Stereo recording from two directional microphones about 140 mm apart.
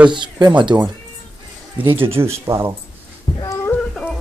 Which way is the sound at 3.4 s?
20° left (ahead or behind).